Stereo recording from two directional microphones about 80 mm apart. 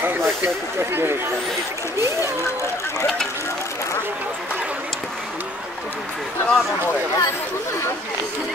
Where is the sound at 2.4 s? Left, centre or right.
Left.